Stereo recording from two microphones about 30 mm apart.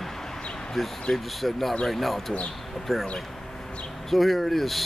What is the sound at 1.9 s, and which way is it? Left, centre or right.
Speech, centre.